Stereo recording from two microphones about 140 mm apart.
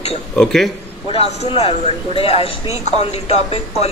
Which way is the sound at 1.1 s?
45° left (ahead or behind).